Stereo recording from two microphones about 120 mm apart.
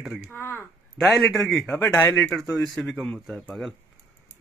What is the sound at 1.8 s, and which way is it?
Speech, 15° left (ahead or behind).